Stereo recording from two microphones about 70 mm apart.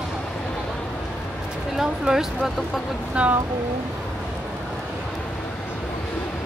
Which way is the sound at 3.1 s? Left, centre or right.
Centre.